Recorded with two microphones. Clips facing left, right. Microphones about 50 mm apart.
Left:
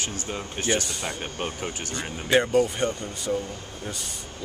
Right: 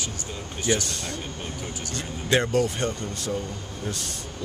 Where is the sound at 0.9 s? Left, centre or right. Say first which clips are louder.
Left 1 dB; centre.